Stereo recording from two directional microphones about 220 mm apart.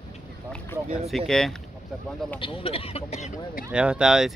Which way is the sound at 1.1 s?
Centre (ahead or behind).